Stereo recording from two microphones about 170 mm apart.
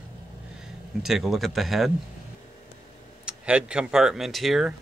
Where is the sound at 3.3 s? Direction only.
5° right (ahead or behind).